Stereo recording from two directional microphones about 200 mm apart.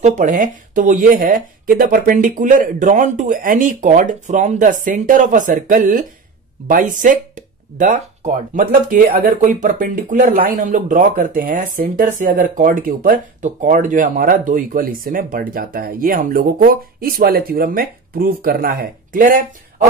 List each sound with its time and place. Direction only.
0.0 s speech: 35° right (ahead or behind)